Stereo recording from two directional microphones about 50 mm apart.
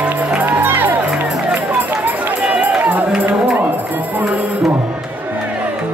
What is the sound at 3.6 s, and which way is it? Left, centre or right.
Music, right.